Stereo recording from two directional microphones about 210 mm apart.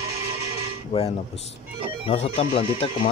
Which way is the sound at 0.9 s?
30° left (ahead or behind).